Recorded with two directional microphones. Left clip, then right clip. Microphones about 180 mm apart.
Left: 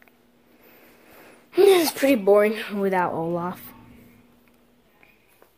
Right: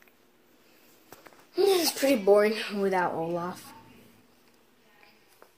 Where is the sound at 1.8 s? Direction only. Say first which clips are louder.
Left 5 dB; 20° left (ahead or behind).